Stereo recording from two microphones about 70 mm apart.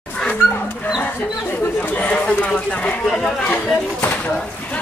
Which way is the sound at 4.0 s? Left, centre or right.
Left.